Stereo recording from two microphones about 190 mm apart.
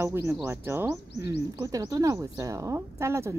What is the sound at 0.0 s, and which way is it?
Speech, 15° right (ahead or behind).